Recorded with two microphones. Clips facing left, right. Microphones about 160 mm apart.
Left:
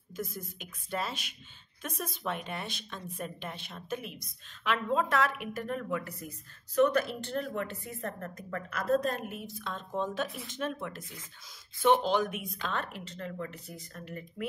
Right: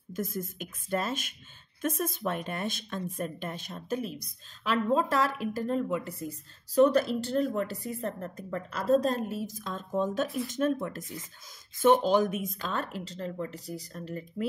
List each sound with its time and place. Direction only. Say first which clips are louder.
0.1 s a woman's voice: right 5 dB; 50° right (ahead or behind); by 14.2 s 35° right (ahead or behind)